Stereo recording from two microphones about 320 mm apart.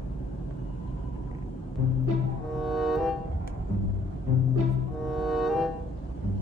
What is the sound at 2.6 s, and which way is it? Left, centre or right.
Music, centre.